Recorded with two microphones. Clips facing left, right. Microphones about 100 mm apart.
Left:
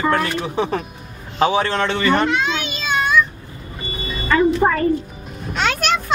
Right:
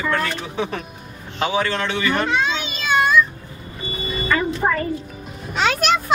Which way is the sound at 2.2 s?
Centre (ahead or behind).